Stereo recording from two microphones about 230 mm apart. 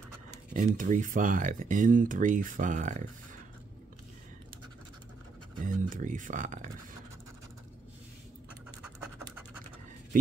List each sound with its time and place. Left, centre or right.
0.7 s speech: right
5.7 s speech: right